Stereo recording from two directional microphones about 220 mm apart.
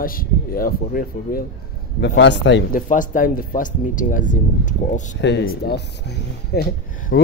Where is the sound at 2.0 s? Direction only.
55° left (ahead or behind).